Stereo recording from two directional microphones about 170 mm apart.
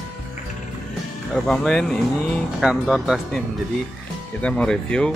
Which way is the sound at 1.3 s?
5° left (ahead or behind).